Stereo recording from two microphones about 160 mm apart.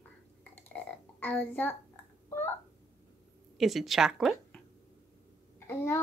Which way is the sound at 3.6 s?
Centre (ahead or behind).